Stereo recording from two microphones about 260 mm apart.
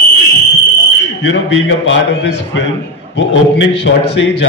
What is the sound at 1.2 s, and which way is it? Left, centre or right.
A man's voice, left.